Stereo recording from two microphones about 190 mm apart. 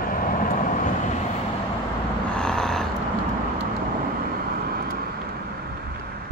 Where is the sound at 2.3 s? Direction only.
5° left (ahead or behind).